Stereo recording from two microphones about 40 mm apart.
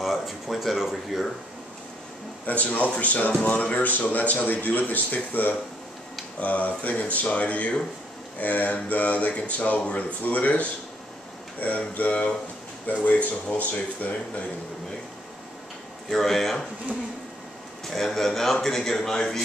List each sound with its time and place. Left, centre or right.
0.0 s speech: centre
2.4 s a man's voice: left
6.4 s speech: left
16.1 s a man's voice: centre
17.8 s a man's voice: centre